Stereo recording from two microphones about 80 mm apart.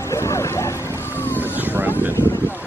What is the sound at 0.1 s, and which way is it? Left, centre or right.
Dog, left.